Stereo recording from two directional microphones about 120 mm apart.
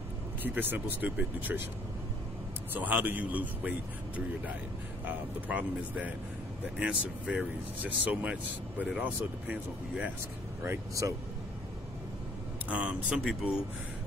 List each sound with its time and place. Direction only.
0.4 s speech: 15° right (ahead or behind)
2.7 s speech: 15° right (ahead or behind)
5.0 s speech: 10° right (ahead or behind)
10.6 s speech: 25° right (ahead or behind)
12.6 s speech: 10° right (ahead or behind)